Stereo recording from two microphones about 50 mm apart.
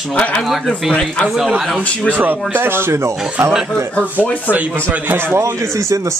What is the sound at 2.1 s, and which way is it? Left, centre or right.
Speech, right.